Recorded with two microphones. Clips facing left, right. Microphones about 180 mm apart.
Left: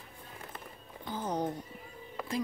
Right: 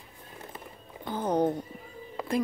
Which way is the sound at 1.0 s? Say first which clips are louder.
Right 7 dB; 60° right (ahead or behind).